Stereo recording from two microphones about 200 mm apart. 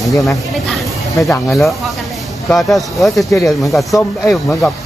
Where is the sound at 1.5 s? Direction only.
Centre (ahead or behind).